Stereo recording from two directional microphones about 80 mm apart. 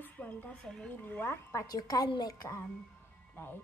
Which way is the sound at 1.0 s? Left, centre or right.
Left.